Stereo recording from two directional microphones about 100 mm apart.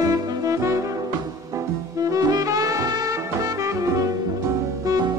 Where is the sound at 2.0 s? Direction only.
35° right (ahead or behind).